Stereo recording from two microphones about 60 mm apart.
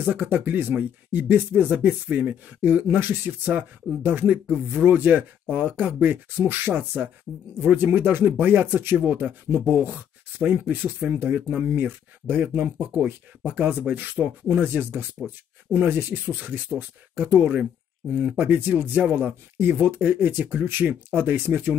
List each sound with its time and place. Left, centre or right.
0.0 s speech: right